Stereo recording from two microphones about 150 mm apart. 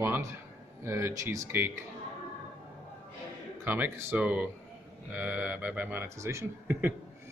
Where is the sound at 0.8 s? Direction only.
20° right (ahead or behind).